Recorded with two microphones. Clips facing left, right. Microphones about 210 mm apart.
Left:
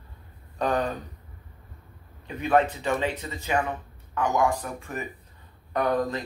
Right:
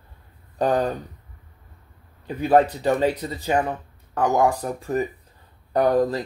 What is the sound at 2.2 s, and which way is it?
Speech, 35° right (ahead or behind).